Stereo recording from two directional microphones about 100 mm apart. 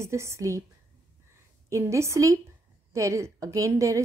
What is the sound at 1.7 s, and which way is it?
A woman's voice, 30° right (ahead or behind).